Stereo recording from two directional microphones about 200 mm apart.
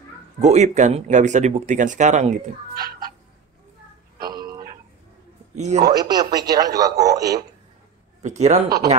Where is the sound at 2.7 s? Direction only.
20° right (ahead or behind).